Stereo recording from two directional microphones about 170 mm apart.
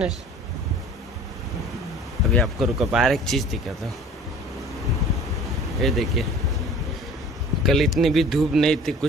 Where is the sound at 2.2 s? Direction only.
Centre (ahead or behind).